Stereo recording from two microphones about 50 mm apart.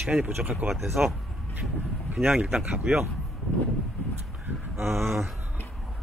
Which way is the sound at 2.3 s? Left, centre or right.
Centre.